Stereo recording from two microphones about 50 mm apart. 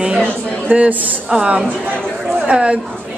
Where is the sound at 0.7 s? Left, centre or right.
Right.